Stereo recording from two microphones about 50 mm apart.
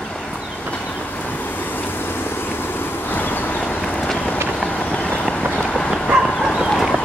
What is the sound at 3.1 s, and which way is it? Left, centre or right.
Vehicle, left.